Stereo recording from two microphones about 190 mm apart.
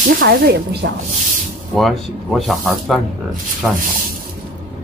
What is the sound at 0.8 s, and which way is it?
Speech, 65° right (ahead or behind).